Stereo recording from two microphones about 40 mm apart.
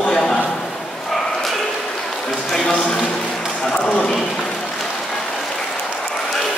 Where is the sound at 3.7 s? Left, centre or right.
Left.